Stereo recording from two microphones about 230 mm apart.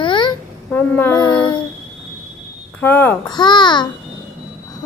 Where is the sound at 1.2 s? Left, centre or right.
Centre.